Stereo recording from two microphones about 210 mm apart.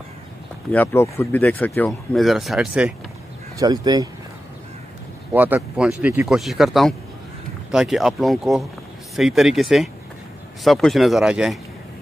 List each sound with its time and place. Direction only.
0.7 s speech: 10° left (ahead or behind)
3.5 s speech: 20° right (ahead or behind)
5.3 s speech: 10° right (ahead or behind)